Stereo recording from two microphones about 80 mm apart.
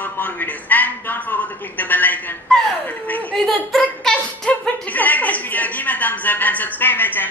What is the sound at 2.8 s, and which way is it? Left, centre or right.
Chuckle, left.